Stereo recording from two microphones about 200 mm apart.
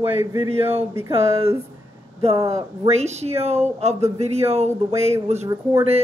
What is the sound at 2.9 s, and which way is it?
Speech, 35° right (ahead or behind).